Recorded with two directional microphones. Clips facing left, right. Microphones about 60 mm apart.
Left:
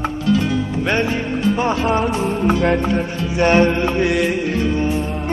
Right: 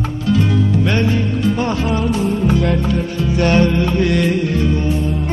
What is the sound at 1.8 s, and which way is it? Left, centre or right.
Music, left.